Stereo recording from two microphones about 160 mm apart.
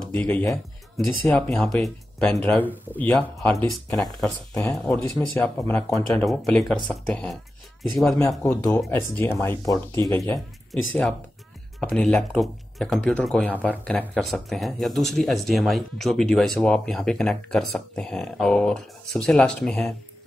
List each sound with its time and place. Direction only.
0.1 s speech: 10° left (ahead or behind)
4.8 s speech: 10° left (ahead or behind)
8.2 s speech: 20° left (ahead or behind)
10.7 s speech: centre (ahead or behind)